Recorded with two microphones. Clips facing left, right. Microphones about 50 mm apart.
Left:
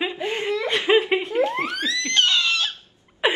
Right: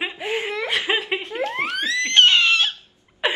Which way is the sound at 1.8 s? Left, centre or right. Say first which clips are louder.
Right 7 dB; right.